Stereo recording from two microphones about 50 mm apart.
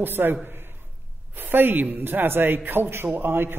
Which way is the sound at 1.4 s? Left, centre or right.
Right.